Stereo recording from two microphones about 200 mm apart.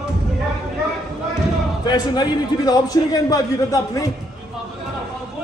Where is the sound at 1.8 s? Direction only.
20° left (ahead or behind).